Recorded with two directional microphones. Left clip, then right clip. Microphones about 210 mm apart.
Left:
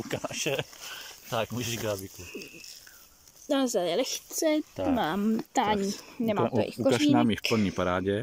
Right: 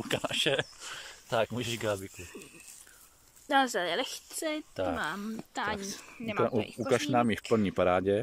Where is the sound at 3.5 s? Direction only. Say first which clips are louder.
Even; 15° left (ahead or behind).